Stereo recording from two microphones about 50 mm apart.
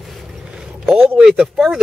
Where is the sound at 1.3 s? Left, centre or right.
Centre.